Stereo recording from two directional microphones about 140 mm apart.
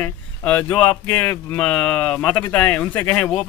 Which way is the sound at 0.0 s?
10° left (ahead or behind).